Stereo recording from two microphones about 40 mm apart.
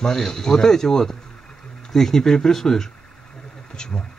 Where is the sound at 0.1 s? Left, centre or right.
Centre.